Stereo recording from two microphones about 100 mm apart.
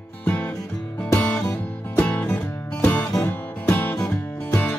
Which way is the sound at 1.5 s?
15° left (ahead or behind).